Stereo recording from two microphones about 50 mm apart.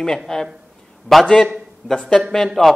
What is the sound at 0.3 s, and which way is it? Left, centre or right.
Speech, centre.